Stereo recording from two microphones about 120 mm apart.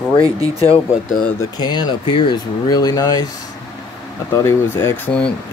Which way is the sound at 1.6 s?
35° left (ahead or behind).